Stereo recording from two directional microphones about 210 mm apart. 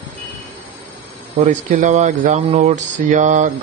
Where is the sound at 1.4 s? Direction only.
35° right (ahead or behind).